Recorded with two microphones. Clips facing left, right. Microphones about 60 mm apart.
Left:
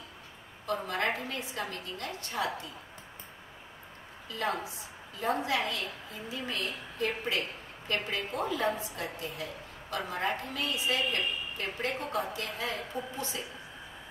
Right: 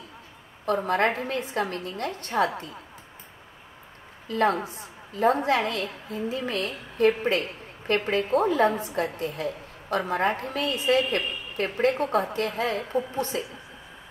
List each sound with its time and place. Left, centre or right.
0.7 s a woman's voice: right
4.3 s a woman's voice: right